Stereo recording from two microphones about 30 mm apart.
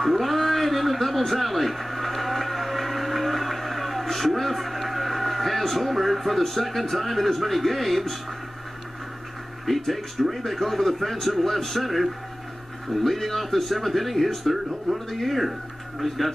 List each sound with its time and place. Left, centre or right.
0.0 s a sound: centre
6.4 s speech: centre
9.8 s speech: centre